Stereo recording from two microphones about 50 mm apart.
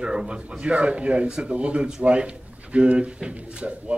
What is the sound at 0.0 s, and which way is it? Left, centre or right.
Speech, centre.